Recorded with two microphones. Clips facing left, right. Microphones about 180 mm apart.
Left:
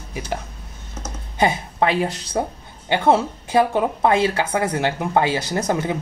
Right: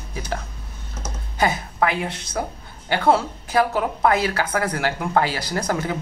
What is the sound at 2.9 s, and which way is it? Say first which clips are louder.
Speech: left 2 dB; 20° left (ahead or behind).